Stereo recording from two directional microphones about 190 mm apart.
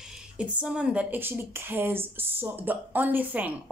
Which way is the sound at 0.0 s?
5° right (ahead or behind).